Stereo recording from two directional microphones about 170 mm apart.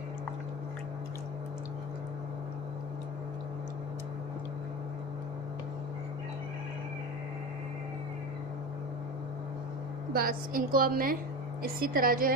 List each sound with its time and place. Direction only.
10.1 s a woman's voice: 60° right (ahead or behind)